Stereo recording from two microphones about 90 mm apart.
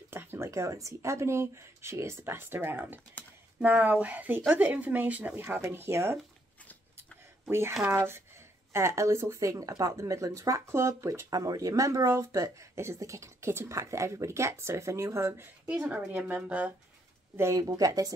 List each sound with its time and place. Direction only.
0.1 s a woman's voice: 25° right (ahead or behind)
7.4 s speech: 30° right (ahead or behind)
15.7 s a woman's voice: 15° right (ahead or behind)
17.6 s speech: 45° right (ahead or behind)